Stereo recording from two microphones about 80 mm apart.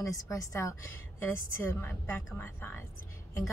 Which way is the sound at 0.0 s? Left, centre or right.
Left.